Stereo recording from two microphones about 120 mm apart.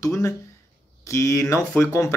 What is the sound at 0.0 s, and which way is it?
A man's voice, 25° left (ahead or behind).